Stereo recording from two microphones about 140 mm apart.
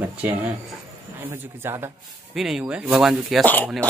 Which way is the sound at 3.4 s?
10° left (ahead or behind).